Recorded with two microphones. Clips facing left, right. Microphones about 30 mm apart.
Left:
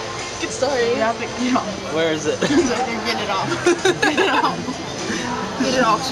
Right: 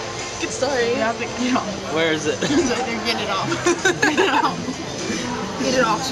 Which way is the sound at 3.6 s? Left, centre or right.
Centre.